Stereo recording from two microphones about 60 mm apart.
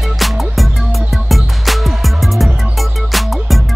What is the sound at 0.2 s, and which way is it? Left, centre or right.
Music, centre.